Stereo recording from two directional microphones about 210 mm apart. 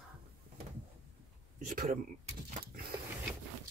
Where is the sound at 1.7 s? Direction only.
40° right (ahead or behind).